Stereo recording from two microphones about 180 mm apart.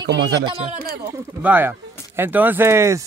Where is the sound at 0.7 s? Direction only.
60° right (ahead or behind).